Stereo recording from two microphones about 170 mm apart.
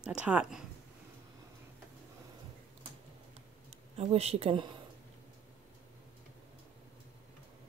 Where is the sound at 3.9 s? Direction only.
35° right (ahead or behind).